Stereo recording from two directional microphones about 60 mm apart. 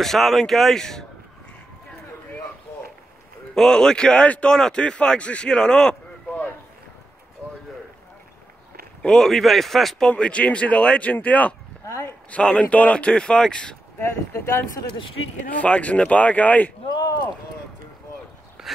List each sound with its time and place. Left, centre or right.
0.0 s speech: centre
3.5 s speech: centre
9.0 s speech: centre
10.0 s speech: centre
11.8 s speech: left
12.3 s speech: centre
14.0 s speech: left
15.5 s speech: left